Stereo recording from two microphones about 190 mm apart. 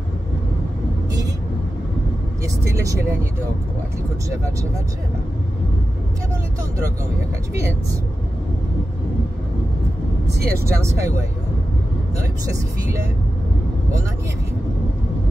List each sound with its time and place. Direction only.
2.4 s vehicle: 15° right (ahead or behind)
10.4 s speech: 55° right (ahead or behind)
10.8 s speech: 15° right (ahead or behind)